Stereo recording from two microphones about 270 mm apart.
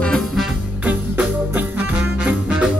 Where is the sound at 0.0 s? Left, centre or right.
Centre.